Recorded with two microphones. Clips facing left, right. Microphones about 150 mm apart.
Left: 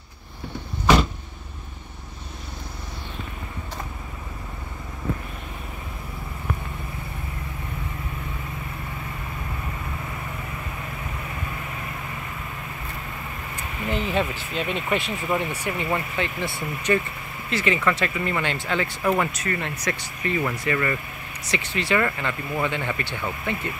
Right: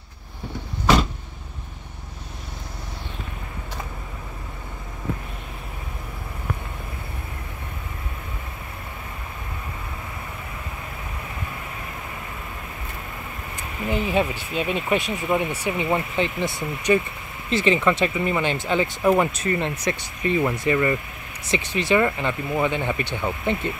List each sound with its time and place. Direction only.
13.8 s speech: 10° right (ahead or behind)